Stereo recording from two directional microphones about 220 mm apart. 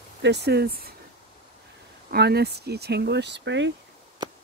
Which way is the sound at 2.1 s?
45° right (ahead or behind).